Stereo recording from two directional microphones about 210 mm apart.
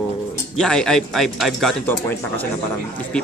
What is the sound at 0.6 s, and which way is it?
Speech, 5° left (ahead or behind).